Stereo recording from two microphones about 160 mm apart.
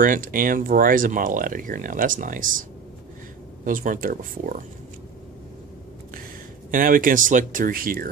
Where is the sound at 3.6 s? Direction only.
60° right (ahead or behind).